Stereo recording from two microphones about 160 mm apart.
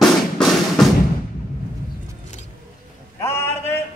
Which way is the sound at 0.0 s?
Centre (ahead or behind).